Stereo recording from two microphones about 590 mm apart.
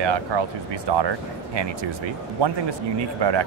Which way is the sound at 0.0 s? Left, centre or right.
Right.